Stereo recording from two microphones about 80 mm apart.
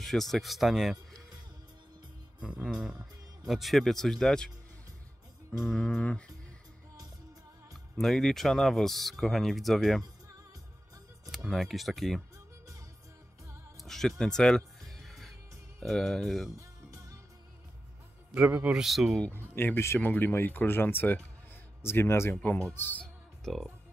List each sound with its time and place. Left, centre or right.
0.0 s speech: centre
2.4 s music: centre
3.4 s speech: centre
5.8 s music: centre
8.0 s speech: centre
11.3 s speech: centre
13.8 s music: centre
15.8 s speech: centre
16.5 s music: right
18.3 s music: centre
18.8 s speech: centre
19.3 s a man's voice: left
22.8 s speech: left
23.4 s speech: centre